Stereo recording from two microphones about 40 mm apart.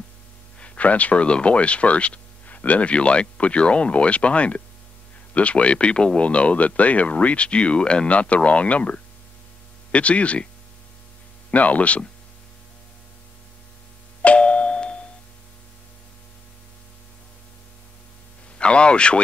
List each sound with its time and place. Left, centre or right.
0.6 s speech: left
11.5 s speech: left
14.2 s doorbell: left
18.6 s a sound: left